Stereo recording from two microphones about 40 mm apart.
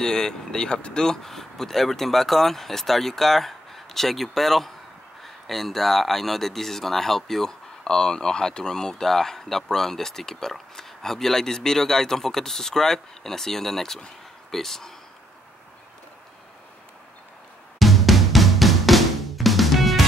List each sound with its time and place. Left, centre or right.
0.0 s speech: centre
17.7 s drum: centre